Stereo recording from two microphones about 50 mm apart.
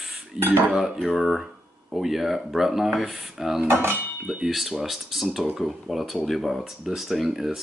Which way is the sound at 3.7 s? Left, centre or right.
Right.